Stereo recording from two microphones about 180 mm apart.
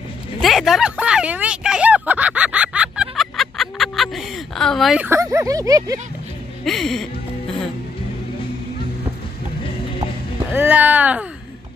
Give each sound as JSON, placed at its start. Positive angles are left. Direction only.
{"t": 0.4, "sound": "a sound", "side_deg": 0}
{"t": 5.0, "sound": "speech", "side_deg": -15}
{"t": 6.6, "sound": "speech", "side_deg": 0}
{"t": 10.5, "sound": "speech", "side_deg": -10}